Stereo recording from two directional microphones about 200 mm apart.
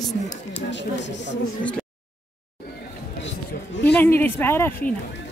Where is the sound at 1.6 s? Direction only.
5° left (ahead or behind).